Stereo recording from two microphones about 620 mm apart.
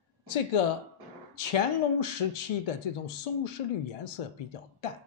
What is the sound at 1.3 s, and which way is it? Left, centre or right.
Speech, left.